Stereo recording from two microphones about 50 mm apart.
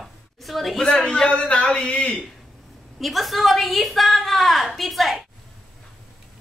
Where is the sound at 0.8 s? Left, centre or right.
Centre.